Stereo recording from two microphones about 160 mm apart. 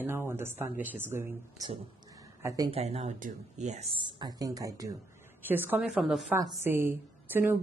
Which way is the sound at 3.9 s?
30° right (ahead or behind).